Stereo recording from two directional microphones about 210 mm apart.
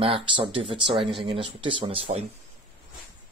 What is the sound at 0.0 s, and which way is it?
Speech, 25° right (ahead or behind).